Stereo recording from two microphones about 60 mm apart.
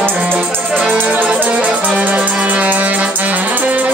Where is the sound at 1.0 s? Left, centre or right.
Right.